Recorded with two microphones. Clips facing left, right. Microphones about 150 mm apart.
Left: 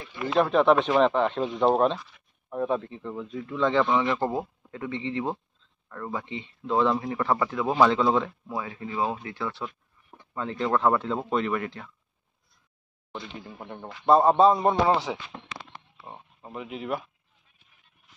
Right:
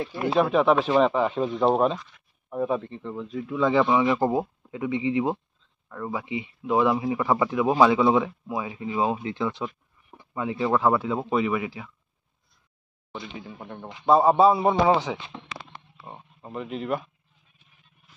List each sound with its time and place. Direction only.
0.0 s speech: 35° right (ahead or behind)
0.3 s speech: 5° right (ahead or behind)
2.0 s a sound: 5° left (ahead or behind)
2.5 s speech: centre (ahead or behind)
13.1 s speech: centre (ahead or behind)